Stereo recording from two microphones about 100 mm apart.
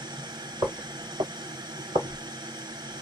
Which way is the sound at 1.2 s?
40° right (ahead or behind).